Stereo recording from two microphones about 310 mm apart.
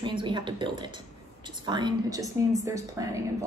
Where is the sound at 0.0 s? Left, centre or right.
Centre.